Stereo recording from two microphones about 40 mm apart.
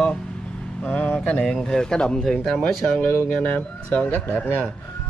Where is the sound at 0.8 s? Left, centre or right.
Left.